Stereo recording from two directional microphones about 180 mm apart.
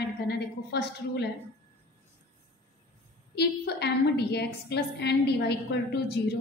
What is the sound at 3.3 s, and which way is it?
A woman's voice, 65° left (ahead or behind).